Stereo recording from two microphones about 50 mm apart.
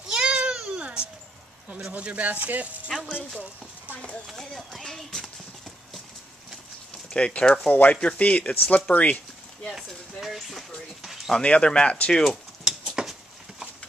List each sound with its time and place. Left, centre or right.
0.1 s a sound: centre
0.7 s baby cry: right
1.9 s speech: right
2.9 s speech: centre
4.4 s speech: centre
7.1 s speech: centre
10.2 s a sound: centre
11.3 s speech: left
12.3 s a sound: centre